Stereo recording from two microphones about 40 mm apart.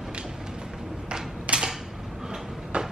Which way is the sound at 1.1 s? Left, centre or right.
Centre.